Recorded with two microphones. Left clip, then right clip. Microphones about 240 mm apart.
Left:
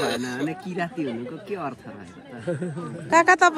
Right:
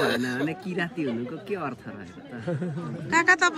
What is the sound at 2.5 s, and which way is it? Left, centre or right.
Speech, right.